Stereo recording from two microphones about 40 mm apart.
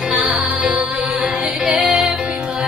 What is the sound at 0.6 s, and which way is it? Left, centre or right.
Music, right.